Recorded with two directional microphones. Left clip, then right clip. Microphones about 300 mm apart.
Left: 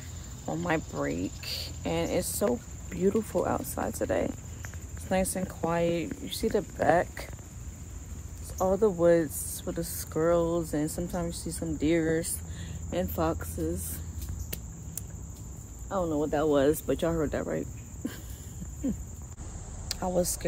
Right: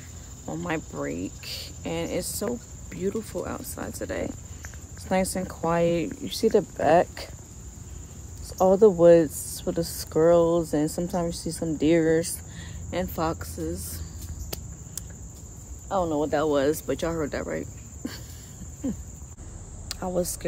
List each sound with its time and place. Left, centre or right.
0.5 s a woman's voice: centre
2.9 s speech: centre
5.0 s speech: centre
8.5 s speech: right; by 13.9 s centre
15.9 s speech: centre
19.9 s a sound: centre